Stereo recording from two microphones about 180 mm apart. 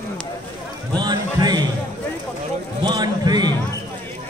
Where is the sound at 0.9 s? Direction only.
25° right (ahead or behind).